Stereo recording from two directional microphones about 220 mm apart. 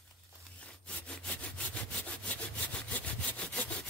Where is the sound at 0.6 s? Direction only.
5° left (ahead or behind).